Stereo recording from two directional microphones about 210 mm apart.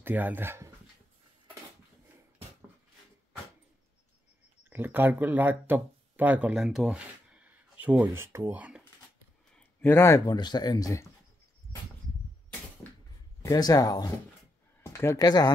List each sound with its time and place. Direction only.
0.0 s speech: 10° right (ahead or behind)
4.6 s speech: 10° right (ahead or behind)
9.6 s speech: 10° left (ahead or behind)
12.8 s a sound: 10° left (ahead or behind)
13.4 s speech: 15° left (ahead or behind)